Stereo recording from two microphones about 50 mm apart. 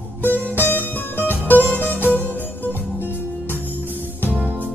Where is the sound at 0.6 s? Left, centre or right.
Left.